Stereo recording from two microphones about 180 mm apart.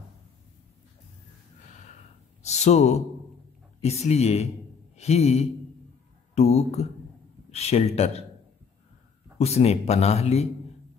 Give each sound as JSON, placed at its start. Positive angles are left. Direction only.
{"t": 2.4, "sound": "speech", "side_deg": 40}
{"t": 4.9, "sound": "a sound", "side_deg": 35}
{"t": 6.3, "sound": "speech", "side_deg": 35}
{"t": 9.4, "sound": "speech", "side_deg": 35}